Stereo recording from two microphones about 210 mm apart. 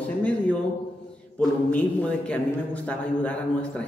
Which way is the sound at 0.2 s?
5° left (ahead or behind).